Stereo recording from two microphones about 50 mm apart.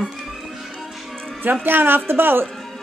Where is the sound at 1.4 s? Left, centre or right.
Right.